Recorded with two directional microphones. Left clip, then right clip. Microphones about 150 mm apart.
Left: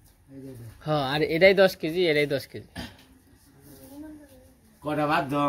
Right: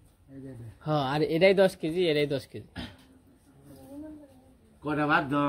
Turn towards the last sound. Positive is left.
turn(degrees=40)  # may be behind; listen again after turning